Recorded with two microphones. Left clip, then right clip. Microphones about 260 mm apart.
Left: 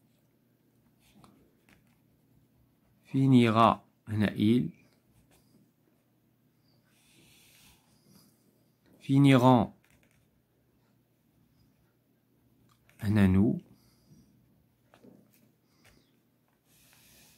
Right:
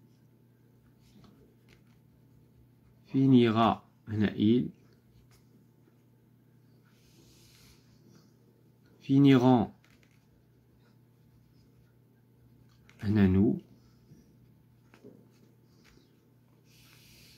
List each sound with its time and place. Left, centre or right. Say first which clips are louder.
3.1 s speech: right 1 dB; left
9.0 s speech: even; left
13.0 s speech: even; left